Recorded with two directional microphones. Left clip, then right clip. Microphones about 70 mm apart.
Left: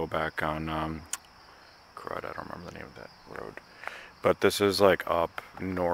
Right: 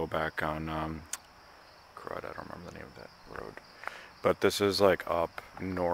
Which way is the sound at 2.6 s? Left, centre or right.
Centre.